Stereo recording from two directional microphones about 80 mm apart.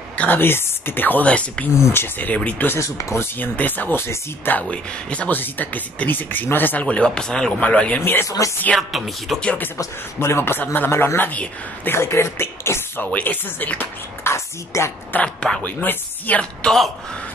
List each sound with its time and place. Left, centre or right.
0.1 s speech: left
1.9 s a man's voice: left
2.7 s speech: left
3.3 s a man's voice: left
4.6 s speech: centre
8.0 s a man's voice: left
8.7 s music: centre
9.4 s speech: centre
9.8 s a man's voice: left
13.0 s a man's voice: centre
14.2 s a sound: left
15.1 s a man's voice: centre